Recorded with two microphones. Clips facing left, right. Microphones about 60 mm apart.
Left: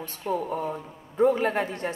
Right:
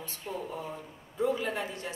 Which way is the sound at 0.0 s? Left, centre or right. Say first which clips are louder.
Left 9 dB; left.